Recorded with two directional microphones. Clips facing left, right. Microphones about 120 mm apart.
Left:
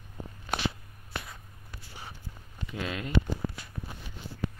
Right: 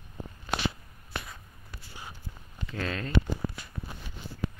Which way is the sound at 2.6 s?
10° left (ahead or behind).